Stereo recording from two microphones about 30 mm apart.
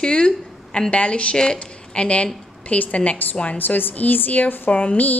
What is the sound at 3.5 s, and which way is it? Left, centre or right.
A woman's voice, left.